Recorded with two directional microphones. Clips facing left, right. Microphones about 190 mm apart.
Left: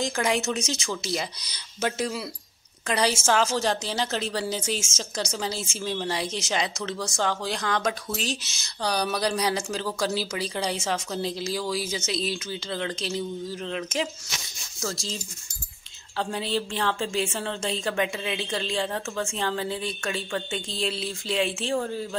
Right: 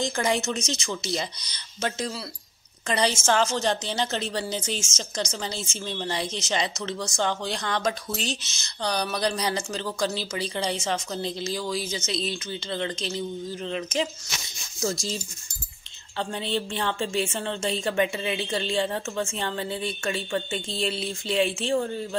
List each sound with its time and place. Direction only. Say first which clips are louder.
0.0 s speech: even; centre (ahead or behind)
14.8 s speech: right 4 dB; 15° right (ahead or behind)
16.2 s speech: left 1 dB; centre (ahead or behind)